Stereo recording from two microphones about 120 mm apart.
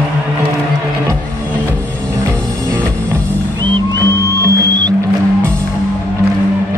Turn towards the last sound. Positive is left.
turn(degrees=-30)  # may be behind; listen again after turning